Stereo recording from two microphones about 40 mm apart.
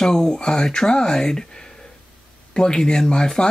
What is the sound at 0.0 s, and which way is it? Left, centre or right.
Speech, centre.